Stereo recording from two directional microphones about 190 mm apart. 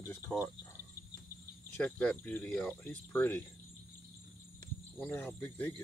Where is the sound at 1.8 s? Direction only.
10° left (ahead or behind).